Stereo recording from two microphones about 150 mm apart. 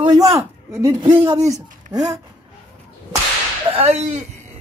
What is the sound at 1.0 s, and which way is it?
Speech, 30° right (ahead or behind).